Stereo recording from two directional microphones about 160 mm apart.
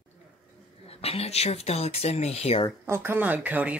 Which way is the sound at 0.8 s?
40° left (ahead or behind).